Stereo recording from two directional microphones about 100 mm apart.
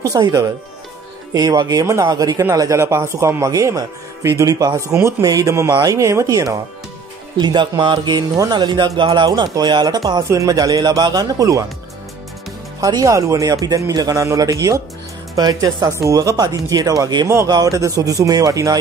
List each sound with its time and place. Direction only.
0.1 s speech: 40° right (ahead or behind)
2.8 s speech: 25° right (ahead or behind)
7.3 s speech: 45° right (ahead or behind)
12.8 s speech: 35° right (ahead or behind)